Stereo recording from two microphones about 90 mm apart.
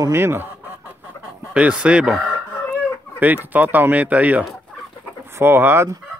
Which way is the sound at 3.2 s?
20° right (ahead or behind).